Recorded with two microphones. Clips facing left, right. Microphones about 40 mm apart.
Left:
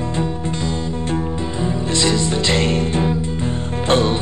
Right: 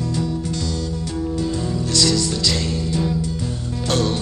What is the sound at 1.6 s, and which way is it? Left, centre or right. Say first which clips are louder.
Music: left 5 dB; left.